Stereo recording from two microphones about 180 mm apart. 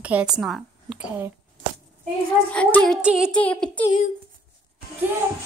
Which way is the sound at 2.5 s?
5° left (ahead or behind).